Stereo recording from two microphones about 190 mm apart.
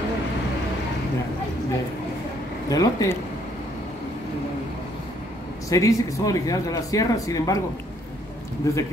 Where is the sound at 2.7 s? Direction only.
15° left (ahead or behind).